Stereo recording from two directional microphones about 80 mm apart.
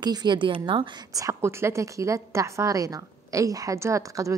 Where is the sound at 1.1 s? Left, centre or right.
Right.